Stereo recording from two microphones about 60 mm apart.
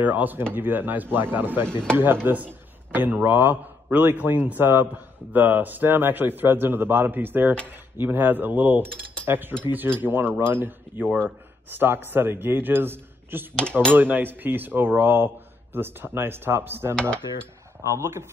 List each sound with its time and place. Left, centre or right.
0.0 s a man's voice: right
9.2 s cutlery: right
9.7 s a man's voice: right
16.9 s dishes: centre
17.8 s speech: right